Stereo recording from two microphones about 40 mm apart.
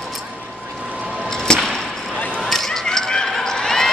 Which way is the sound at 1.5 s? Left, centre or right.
Centre.